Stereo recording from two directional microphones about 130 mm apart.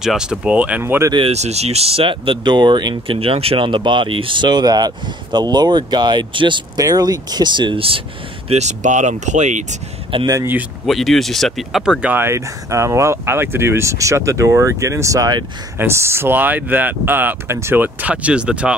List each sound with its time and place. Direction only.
0.0 s speech: 5° right (ahead or behind)
1.3 s speech: 55° right (ahead or behind); by 3.2 s 35° right (ahead or behind)
3.2 s speech: 50° right (ahead or behind)
8.5 s speech: 60° right (ahead or behind)
10.2 s speech: 25° right (ahead or behind)
10.9 s speech: centre (ahead or behind)